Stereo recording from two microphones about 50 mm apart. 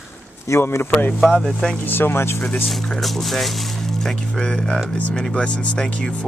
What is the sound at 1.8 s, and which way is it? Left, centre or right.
Speech, left.